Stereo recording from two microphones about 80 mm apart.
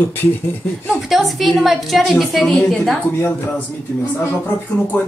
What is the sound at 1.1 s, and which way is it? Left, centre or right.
A woman's voice, centre.